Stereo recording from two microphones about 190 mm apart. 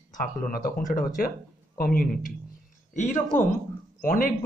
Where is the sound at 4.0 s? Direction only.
50° left (ahead or behind).